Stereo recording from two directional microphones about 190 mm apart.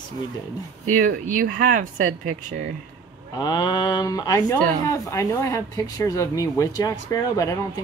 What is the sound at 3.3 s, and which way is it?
Speech, 20° left (ahead or behind).